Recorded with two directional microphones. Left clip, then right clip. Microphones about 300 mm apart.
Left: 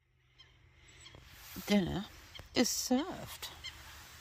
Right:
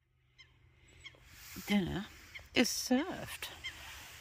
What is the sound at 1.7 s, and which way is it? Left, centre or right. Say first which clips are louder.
Speech: left 2 dB; centre.